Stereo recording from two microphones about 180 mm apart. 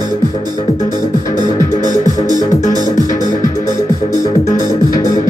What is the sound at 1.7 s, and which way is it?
Music, 45° left (ahead or behind).